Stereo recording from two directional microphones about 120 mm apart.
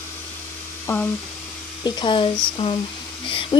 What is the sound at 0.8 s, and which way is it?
Speech, 20° left (ahead or behind).